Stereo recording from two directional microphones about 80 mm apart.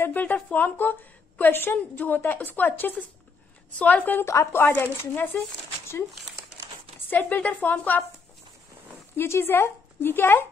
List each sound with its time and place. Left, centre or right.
0.0 s a woman's voice: left
4.3 s speech: left
4.7 s a woman's voice: left
7.1 s a woman's voice: left
9.1 s a woman's voice: left